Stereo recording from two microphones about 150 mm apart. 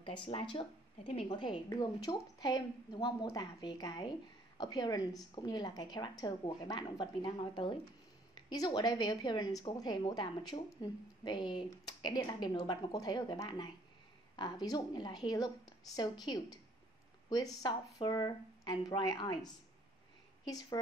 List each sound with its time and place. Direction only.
0.0 s a woman's voice: 35° left (ahead or behind)